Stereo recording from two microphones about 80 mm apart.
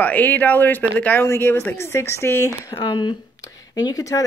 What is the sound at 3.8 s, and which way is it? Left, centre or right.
Speech, left.